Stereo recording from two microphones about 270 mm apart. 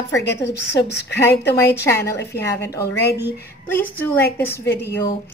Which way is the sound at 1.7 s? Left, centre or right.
Centre.